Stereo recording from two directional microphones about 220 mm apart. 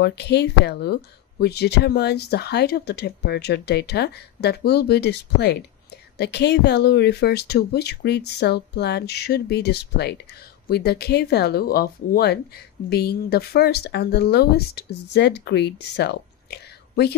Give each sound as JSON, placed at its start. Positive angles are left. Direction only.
{"t": 0.0, "sound": "speech", "side_deg": 50}